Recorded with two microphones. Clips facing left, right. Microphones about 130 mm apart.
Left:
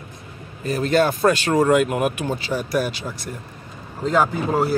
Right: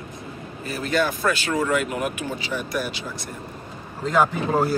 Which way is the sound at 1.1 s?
45° left (ahead or behind).